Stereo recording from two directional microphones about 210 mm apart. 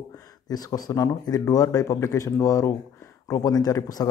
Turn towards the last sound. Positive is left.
turn(degrees=15)  # may be behind; listen again after turning